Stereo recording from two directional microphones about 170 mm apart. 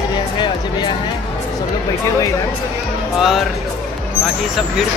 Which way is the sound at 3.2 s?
Centre (ahead or behind).